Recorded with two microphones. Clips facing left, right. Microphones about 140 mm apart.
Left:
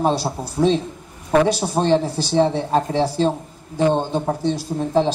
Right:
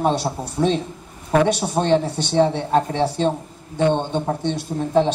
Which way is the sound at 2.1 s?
35° left (ahead or behind).